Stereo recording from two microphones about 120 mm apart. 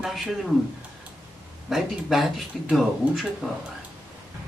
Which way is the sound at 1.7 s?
Centre (ahead or behind).